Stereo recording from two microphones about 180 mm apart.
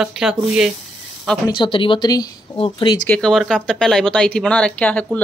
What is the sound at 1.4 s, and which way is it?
Speech, 25° left (ahead or behind).